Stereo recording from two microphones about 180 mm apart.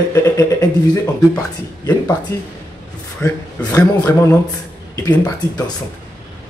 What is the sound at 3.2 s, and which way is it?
A man's voice, 15° left (ahead or behind).